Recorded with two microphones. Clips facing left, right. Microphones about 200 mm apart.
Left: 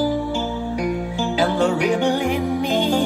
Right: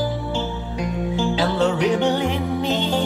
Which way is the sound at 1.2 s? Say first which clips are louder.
Even; 10° left (ahead or behind).